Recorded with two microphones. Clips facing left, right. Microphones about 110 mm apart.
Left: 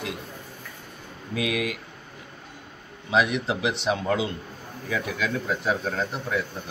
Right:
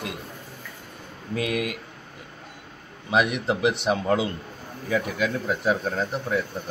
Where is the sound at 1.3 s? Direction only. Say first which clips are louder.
Right 1 dB; 45° right (ahead or behind).